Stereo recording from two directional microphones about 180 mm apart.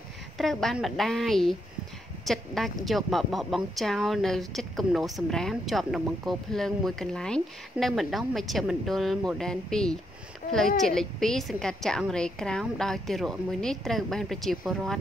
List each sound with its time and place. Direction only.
0.4 s a woman's voice: centre (ahead or behind)